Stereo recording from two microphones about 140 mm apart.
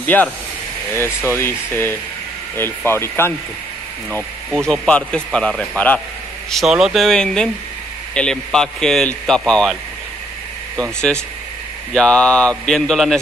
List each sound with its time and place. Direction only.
0.0 s speech: 10° left (ahead or behind)
4.6 s speech: 10° left (ahead or behind)
6.5 s a man's voice: centre (ahead or behind)
10.8 s a man's voice: 5° left (ahead or behind)